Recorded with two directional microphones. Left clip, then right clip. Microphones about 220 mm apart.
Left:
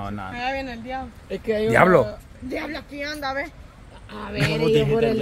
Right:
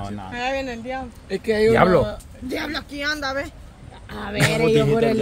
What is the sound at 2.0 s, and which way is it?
A man's voice, 50° right (ahead or behind).